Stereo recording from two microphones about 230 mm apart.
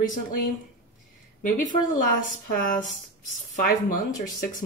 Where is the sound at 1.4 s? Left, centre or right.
Left.